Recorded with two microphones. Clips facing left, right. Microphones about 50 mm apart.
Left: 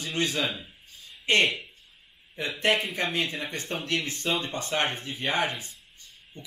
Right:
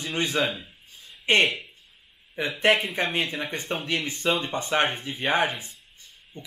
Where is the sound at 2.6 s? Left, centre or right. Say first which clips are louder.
Right 3 dB; centre.